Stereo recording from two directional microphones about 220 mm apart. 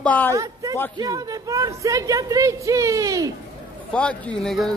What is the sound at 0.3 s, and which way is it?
A man's voice, 15° right (ahead or behind).